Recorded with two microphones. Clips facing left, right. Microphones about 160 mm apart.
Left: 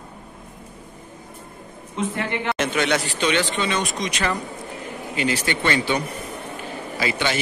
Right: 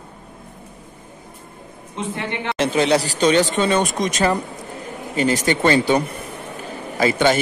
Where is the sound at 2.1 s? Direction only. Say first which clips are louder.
Right 3 dB; 25° right (ahead or behind).